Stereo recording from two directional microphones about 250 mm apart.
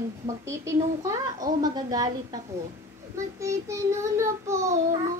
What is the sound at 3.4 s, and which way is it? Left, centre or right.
A child's voice, centre.